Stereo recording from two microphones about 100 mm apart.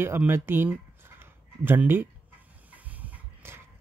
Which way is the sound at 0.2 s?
20° right (ahead or behind).